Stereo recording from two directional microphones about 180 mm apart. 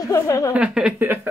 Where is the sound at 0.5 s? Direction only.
5° right (ahead or behind).